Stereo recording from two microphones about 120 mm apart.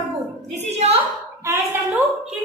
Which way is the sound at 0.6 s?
60° right (ahead or behind).